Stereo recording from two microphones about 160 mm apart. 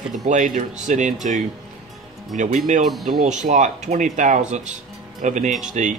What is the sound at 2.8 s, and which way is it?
Speech, centre (ahead or behind).